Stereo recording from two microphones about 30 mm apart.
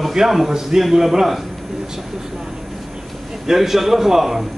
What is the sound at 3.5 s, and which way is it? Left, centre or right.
Speech, centre.